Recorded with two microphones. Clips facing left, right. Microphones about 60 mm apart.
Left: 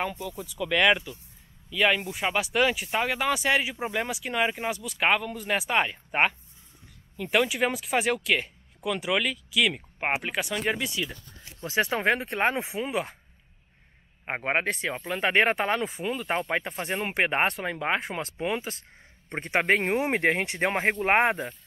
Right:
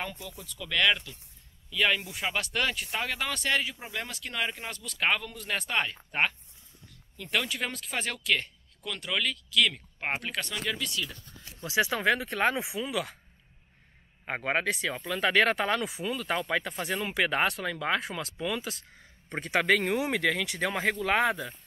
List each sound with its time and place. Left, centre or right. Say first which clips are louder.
0.0 s speech: left 7 dB; centre
11.6 s speech: left 1 dB; left
14.2 s speech: left 2 dB; left